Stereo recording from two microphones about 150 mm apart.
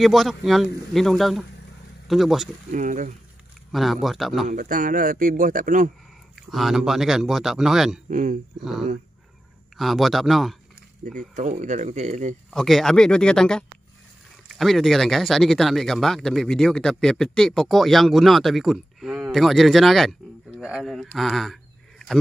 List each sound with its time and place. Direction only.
0.0 s speech: centre (ahead or behind)
2.7 s speech: 60° right (ahead or behind)
3.7 s speech: centre (ahead or behind)
4.5 s a man's voice: 65° right (ahead or behind)
6.5 s speech: centre (ahead or behind)
8.1 s speech: 60° right (ahead or behind)
9.8 s speech: centre (ahead or behind)
11.1 s speech: 60° right (ahead or behind)
12.4 s speech: centre (ahead or behind)